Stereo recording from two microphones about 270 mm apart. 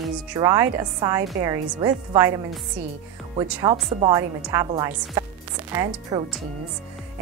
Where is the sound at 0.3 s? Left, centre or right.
Centre.